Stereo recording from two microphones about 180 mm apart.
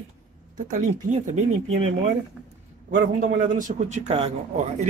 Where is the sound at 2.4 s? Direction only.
5° right (ahead or behind).